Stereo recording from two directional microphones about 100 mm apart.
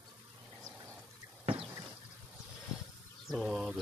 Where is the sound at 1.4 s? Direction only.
70° right (ahead or behind).